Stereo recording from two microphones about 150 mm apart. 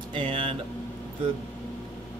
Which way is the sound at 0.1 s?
35° right (ahead or behind).